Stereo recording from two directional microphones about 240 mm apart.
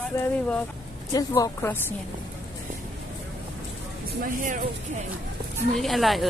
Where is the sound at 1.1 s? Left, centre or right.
Centre.